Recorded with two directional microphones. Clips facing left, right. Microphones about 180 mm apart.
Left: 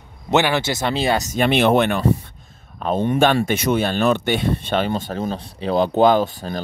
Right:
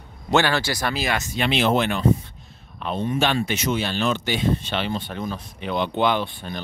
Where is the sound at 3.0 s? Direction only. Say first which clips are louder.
Left 5 dB; 55° left (ahead or behind).